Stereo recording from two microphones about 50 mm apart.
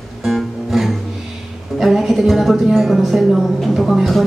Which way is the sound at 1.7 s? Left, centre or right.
Centre.